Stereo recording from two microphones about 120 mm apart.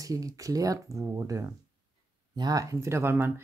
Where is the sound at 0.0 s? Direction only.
30° right (ahead or behind).